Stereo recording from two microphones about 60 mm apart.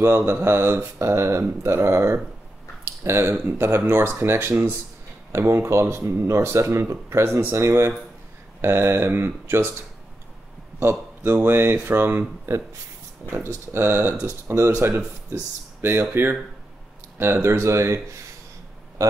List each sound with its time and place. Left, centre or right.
0.0 s speech: right
10.8 s a man's voice: right
13.7 s speech: right
15.8 s speech: right
19.0 s speech: right